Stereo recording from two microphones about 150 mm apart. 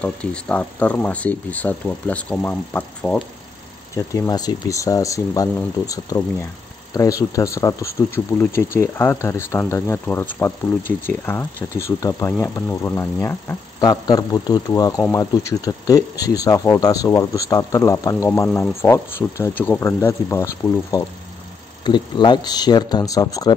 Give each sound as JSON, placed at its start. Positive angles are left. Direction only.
{"t": 0.0, "sound": "speech", "side_deg": 5}
{"t": 3.9, "sound": "speech", "side_deg": 20}
{"t": 21.8, "sound": "speech", "side_deg": 30}